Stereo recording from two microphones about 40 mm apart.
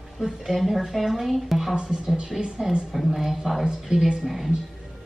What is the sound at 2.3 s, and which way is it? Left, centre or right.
Speech, centre.